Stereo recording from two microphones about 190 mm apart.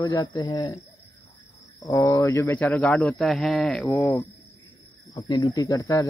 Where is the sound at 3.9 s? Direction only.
15° left (ahead or behind).